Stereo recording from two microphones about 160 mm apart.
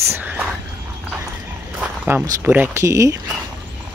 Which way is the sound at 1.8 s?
5° right (ahead or behind).